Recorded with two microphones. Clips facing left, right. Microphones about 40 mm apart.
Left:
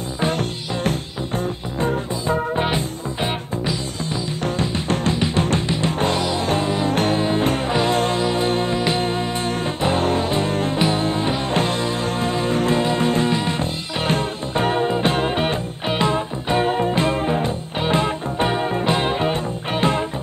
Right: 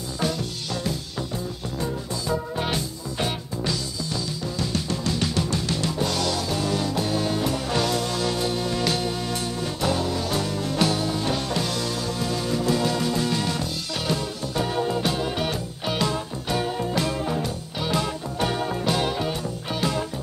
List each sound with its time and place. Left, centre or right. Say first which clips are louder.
0.3 s music: left 5 dB; left
2.2 s music: left 6 dB; left
4.8 s music: left 6 dB; left
5.1 s music: left 5 dB; left
6.4 s music: left 5 dB; left
7.2 s music: left 5 dB; left
8.2 s music: left 5 dB; left
8.5 s music: left 6 dB; left
8.7 s music: left 5 dB; left